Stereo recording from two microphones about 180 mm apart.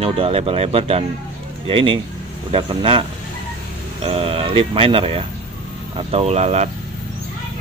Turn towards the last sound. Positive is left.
turn(degrees=-35)  # may be behind; listen again after turning